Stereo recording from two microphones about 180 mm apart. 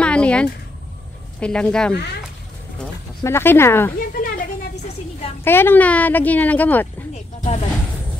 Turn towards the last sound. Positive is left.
turn(degrees=35)  # may be behind; listen again after turning